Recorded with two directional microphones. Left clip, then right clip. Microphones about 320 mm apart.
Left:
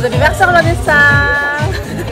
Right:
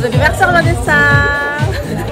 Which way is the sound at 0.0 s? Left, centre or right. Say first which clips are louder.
Left 1 dB; centre.